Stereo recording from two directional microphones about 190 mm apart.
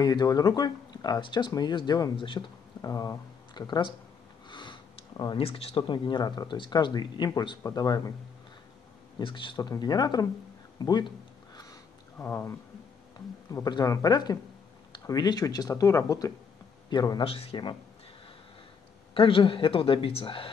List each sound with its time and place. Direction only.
0.0 s speech: 20° left (ahead or behind)
9.2 s speech: 25° left (ahead or behind)
10.8 s a sound: 20° left (ahead or behind)
12.2 s speech: 10° left (ahead or behind); by 17.7 s 30° left (ahead or behind)
19.1 s speech: 25° left (ahead or behind)